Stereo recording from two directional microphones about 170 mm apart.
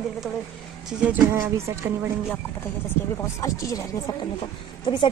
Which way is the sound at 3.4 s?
20° left (ahead or behind).